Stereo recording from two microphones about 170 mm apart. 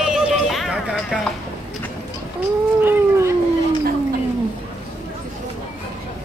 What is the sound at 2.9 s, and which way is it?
Dog, 15° right (ahead or behind).